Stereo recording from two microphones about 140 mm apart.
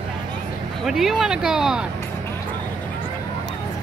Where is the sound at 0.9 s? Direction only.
5° right (ahead or behind).